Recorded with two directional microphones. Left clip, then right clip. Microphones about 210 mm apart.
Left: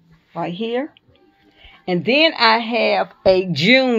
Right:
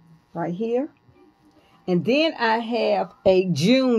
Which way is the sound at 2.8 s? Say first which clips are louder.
Left 4 dB; 35° left (ahead or behind).